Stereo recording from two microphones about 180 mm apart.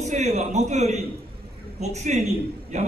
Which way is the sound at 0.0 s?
40° right (ahead or behind).